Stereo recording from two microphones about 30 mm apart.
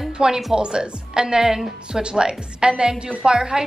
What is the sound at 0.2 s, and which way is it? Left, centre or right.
A woman's voice, right.